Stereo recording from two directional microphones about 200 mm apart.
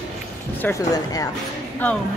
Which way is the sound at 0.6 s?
15° left (ahead or behind).